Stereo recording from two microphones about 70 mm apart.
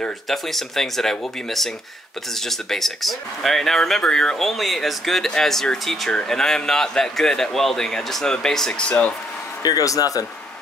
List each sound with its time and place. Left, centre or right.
0.3 s speech: centre
9.6 s speech: left